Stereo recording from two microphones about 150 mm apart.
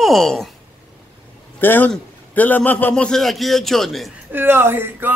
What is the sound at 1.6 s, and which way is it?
A man's voice, 10° left (ahead or behind).